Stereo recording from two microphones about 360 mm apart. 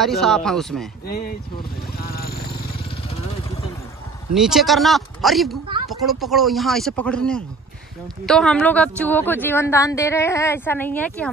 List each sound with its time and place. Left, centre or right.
0.0 s a woman's voice: centre
2.0 s vehicle: left
4.3 s a woman's voice: centre